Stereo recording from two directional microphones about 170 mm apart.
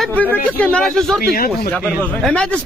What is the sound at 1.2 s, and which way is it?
Speech, 60° left (ahead or behind).